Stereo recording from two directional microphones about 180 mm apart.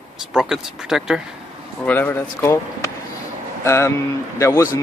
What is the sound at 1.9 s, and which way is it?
Speech, 10° left (ahead or behind).